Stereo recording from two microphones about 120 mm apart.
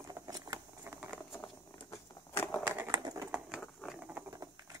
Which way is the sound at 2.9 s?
30° right (ahead or behind).